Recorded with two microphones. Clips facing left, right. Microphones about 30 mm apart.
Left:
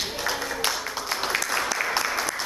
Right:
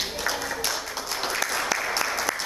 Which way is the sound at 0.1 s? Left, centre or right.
Centre.